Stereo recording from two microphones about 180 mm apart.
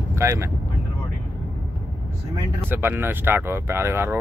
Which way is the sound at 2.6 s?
10° right (ahead or behind).